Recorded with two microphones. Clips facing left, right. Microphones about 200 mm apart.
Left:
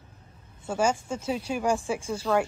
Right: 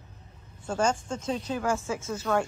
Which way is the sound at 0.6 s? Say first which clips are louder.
Left 1 dB; 10° left (ahead or behind).